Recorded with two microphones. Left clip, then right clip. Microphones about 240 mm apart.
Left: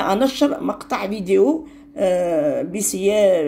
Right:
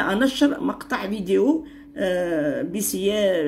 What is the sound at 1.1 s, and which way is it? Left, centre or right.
Speech, left.